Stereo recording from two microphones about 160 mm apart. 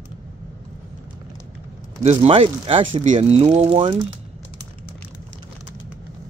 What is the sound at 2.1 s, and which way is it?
Speech, 35° right (ahead or behind).